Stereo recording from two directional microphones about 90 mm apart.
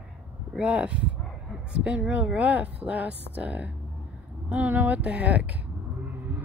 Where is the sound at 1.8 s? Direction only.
15° right (ahead or behind).